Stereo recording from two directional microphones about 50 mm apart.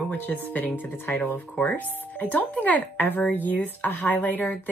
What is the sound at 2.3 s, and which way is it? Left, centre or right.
Speech, left.